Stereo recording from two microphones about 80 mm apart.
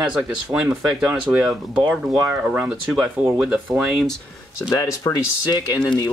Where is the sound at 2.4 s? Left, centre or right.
Right.